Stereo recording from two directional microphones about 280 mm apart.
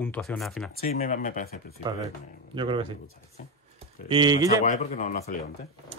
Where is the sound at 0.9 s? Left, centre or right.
Left.